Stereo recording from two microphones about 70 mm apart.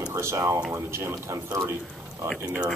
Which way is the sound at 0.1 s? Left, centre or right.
Right.